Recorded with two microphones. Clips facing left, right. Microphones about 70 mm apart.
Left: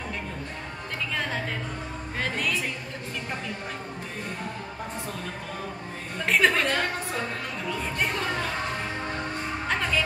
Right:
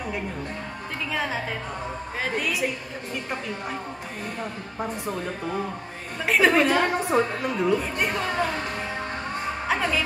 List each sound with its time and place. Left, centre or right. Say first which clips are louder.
1.1 s a woman's voice: right 3 dB; centre
6.1 s a woman's voice: right 3 dB; centre
7.0 s a woman's voice: right 8 dB; right
8.1 s a woman's voice: right 3 dB; centre
9.7 s music: right 2 dB; centre